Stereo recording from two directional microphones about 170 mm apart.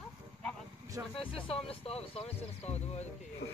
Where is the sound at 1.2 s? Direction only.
35° left (ahead or behind).